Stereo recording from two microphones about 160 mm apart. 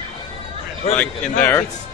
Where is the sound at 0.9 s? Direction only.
10° left (ahead or behind).